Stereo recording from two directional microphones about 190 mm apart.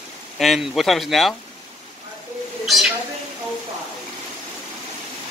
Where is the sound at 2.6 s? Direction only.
Centre (ahead or behind).